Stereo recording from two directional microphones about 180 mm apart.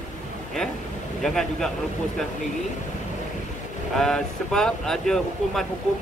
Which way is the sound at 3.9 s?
5° left (ahead or behind).